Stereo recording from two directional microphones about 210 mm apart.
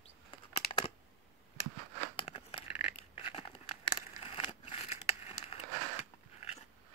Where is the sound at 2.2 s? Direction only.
25° left (ahead or behind).